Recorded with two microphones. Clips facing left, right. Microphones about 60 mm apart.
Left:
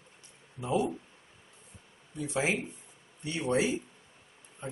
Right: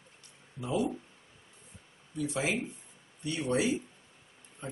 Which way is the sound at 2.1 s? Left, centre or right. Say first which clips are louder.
Left 1 dB; left.